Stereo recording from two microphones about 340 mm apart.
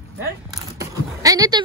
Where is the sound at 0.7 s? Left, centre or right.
Centre.